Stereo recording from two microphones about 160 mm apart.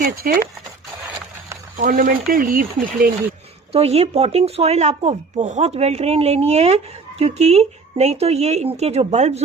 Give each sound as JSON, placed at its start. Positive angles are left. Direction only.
{"t": 0.0, "sound": "speech", "side_deg": -60}
{"t": 1.8, "sound": "speech", "side_deg": -60}
{"t": 3.7, "sound": "speech", "side_deg": -40}